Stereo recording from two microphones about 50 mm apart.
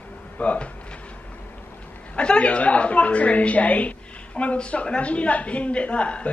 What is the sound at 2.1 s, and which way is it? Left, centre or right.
Speech, left.